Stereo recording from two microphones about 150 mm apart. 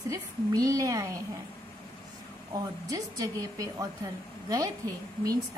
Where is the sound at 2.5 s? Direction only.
25° right (ahead or behind).